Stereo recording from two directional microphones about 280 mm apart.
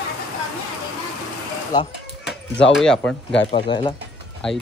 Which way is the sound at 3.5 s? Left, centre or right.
Centre.